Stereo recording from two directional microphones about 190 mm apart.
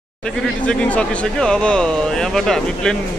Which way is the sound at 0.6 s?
5° left (ahead or behind).